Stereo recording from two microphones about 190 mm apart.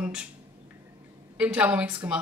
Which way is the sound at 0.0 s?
5° right (ahead or behind).